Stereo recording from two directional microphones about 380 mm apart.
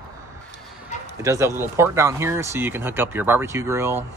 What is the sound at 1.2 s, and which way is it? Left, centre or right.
Speech, centre.